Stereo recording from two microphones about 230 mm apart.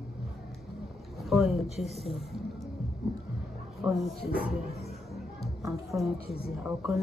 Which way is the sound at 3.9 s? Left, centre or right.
Centre.